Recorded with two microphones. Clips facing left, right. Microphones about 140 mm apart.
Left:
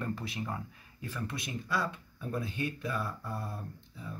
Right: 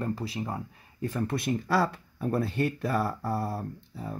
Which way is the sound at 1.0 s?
50° right (ahead or behind).